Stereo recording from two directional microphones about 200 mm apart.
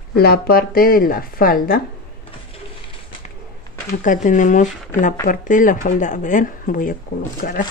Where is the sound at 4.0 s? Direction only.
40° left (ahead or behind).